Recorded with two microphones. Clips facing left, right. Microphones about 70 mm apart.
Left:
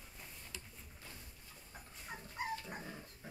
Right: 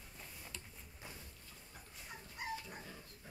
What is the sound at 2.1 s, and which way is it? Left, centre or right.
Dog, left.